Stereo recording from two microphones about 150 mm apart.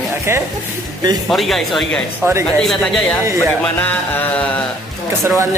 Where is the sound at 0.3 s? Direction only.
15° right (ahead or behind).